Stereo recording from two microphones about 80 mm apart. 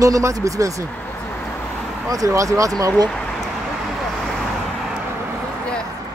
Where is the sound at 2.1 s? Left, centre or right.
Right.